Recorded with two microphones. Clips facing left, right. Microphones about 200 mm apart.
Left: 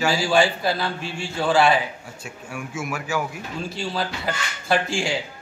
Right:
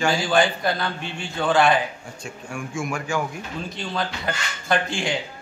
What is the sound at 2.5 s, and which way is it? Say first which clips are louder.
Speech: right 1 dB; 5° left (ahead or behind).